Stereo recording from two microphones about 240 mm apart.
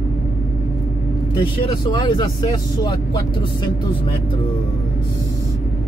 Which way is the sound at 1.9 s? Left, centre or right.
Centre.